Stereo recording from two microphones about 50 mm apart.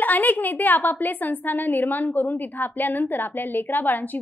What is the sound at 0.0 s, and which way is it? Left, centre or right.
A woman's voice, left.